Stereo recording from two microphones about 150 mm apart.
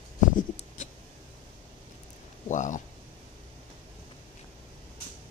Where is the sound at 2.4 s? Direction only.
55° left (ahead or behind).